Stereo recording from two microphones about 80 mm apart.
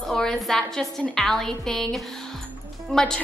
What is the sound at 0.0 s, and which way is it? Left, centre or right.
A woman's voice, centre.